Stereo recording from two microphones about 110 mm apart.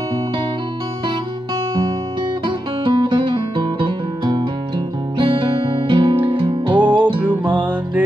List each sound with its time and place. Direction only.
2.4 s music: 50° right (ahead or behind)
6.8 s music: 15° right (ahead or behind)